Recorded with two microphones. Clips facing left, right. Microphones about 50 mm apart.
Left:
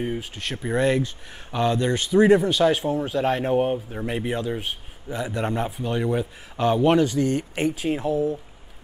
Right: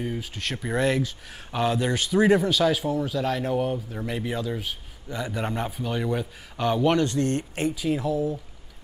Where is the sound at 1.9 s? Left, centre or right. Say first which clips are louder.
Left 4 dB; left.